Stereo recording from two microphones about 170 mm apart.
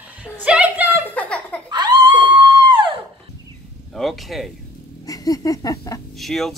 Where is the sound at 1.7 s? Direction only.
25° right (ahead or behind).